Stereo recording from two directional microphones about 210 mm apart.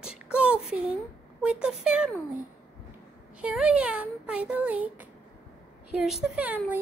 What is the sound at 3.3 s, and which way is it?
Speech, 5° right (ahead or behind).